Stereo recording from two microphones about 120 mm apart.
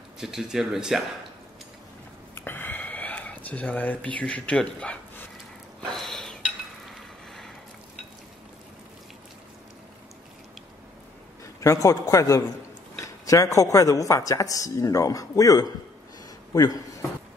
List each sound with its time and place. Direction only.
0.2 s speech: 5° right (ahead or behind)
2.3 s a sound: 20° left (ahead or behind)
5.9 s dishes: centre (ahead or behind)
6.9 s frying: centre (ahead or behind)
11.6 s speech: 25° left (ahead or behind)